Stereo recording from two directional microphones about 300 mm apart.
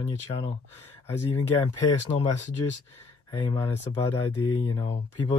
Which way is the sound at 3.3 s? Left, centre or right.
Centre.